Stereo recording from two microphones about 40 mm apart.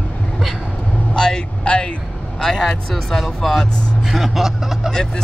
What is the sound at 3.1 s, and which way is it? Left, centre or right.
Speech, centre.